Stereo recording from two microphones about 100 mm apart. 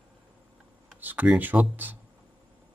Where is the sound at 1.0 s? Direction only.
15° right (ahead or behind).